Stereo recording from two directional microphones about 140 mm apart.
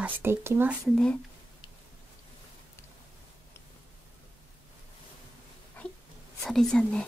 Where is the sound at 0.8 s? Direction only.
5° left (ahead or behind).